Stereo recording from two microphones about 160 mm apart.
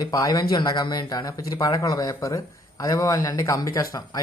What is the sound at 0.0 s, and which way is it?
Speech, 20° left (ahead or behind).